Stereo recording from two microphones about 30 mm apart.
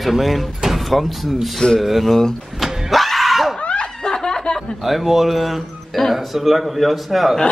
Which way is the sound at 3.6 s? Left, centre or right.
Left.